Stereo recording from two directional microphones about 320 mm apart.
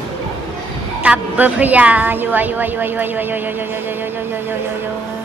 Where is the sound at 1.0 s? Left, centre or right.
Centre.